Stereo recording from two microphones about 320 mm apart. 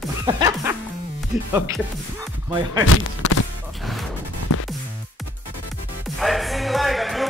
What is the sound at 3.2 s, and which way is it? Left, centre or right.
Music, left.